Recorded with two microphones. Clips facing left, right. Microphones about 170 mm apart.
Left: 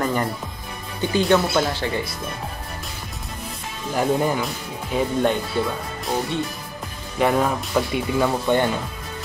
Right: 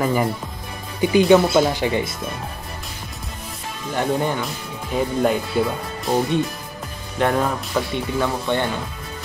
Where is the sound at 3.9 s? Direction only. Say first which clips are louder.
Left 1 dB; 5° left (ahead or behind).